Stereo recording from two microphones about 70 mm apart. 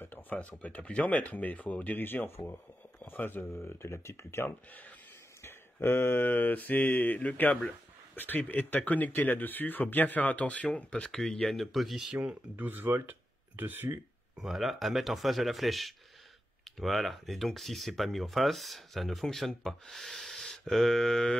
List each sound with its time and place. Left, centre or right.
0.0 s a sound: left
0.4 s speech: left
4.5 s speech: left
5.4 s speech: left; by 11.5 s centre
11.5 s speech: centre
12.5 s speech: right
14.3 s speech: centre